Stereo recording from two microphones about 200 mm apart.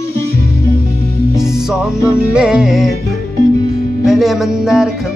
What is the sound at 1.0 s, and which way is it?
Music, 50° right (ahead or behind).